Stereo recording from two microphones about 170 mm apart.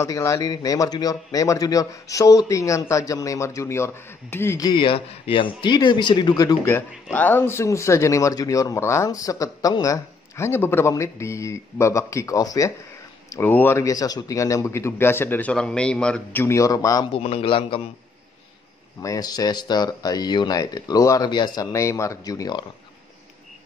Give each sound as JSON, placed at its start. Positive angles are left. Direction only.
{"t": 0.0, "sound": "a man's voice", "side_deg": 15}
{"t": 16.4, "sound": "speech", "side_deg": 20}
{"t": 17.1, "sound": "a man's voice", "side_deg": 35}
{"t": 18.9, "sound": "speech", "side_deg": 20}